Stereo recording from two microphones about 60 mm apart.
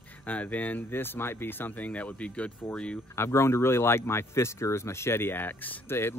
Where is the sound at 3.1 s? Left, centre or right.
Left.